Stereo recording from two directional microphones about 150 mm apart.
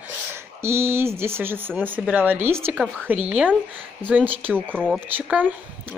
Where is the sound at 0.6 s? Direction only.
15° right (ahead or behind).